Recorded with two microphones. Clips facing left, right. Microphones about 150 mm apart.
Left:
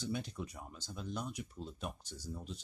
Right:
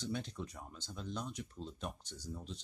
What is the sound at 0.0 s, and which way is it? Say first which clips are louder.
Speech: left 1 dB; 10° left (ahead or behind).